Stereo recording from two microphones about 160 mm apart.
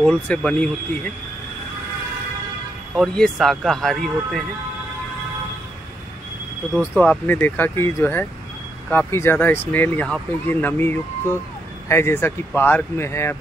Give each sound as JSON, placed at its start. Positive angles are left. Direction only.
{"t": 0.0, "sound": "speech", "side_deg": 5}
{"t": 2.9, "sound": "speech", "side_deg": 0}
{"t": 7.0, "sound": "speech", "side_deg": 10}